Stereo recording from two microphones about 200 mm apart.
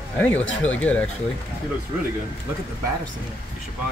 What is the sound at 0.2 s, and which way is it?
Speech, 5° left (ahead or behind).